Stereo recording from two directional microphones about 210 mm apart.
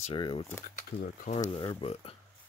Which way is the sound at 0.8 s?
35° left (ahead or behind).